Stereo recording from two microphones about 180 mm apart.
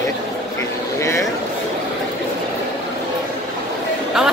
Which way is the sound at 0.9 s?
15° left (ahead or behind).